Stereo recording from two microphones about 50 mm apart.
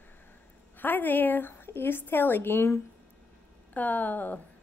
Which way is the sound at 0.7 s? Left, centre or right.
Left.